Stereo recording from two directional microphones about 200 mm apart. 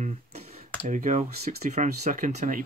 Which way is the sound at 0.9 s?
40° right (ahead or behind).